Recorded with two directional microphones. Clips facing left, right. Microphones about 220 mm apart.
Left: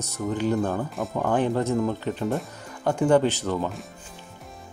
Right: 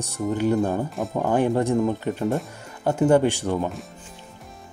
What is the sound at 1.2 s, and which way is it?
Speech, 15° right (ahead or behind).